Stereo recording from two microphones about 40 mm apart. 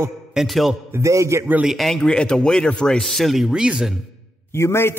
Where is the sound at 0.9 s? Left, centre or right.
Right.